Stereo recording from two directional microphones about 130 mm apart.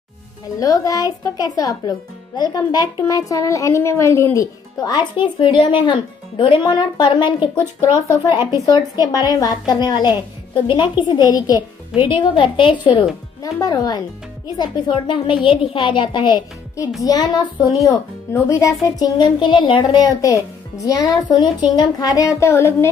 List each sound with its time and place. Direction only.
0.6 s a woman's voice: 25° left (ahead or behind)
8.3 s speech: 20° right (ahead or behind)
8.6 s a woman's voice: 30° left (ahead or behind)
12.2 s a woman's voice: 40° left (ahead or behind)
13.4 s a woman's voice: 25° left (ahead or behind)